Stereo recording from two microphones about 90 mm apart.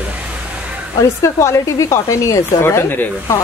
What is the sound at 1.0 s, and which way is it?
Speech, 35° left (ahead or behind).